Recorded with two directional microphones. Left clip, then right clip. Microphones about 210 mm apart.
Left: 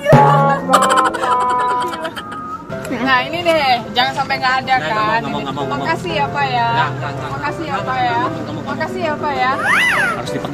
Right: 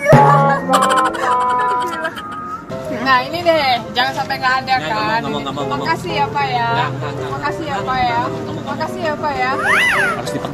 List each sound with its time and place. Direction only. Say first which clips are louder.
0.1 s music: even; centre (ahead or behind)
3.0 s speech: right 1 dB; 20° left (ahead or behind)
9.6 s speech: right 2 dB; centre (ahead or behind)